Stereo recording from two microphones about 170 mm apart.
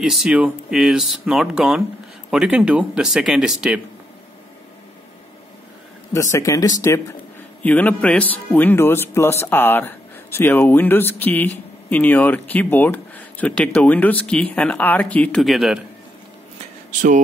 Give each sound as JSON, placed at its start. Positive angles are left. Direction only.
{"t": 0.0, "sound": "speech", "side_deg": -5}
{"t": 6.3, "sound": "speech", "side_deg": 20}